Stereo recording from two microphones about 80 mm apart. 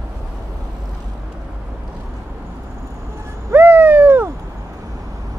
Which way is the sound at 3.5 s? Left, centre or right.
Right.